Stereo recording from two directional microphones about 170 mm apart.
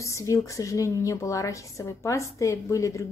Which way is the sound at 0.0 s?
20° left (ahead or behind).